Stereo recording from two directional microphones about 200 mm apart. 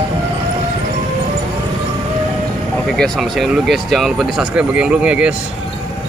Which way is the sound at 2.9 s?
Centre (ahead or behind).